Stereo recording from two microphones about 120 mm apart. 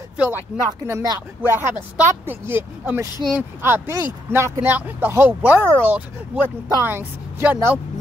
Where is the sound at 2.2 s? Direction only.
20° right (ahead or behind).